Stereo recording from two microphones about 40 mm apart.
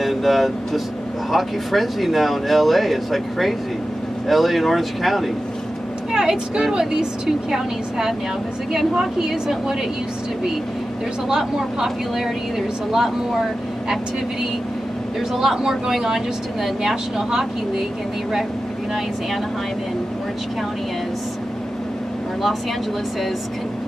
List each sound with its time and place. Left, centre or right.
0.0 s speech: centre
6.1 s speech: centre
9.3 s speech: centre
11.2 s speech: centre
15.3 s speech: centre